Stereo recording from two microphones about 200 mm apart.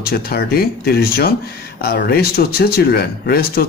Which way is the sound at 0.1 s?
50° left (ahead or behind).